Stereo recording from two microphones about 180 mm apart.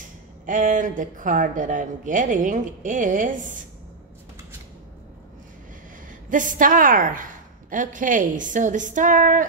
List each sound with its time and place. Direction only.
0.5 s speech: 45° right (ahead or behind)
6.3 s speech: 45° right (ahead or behind)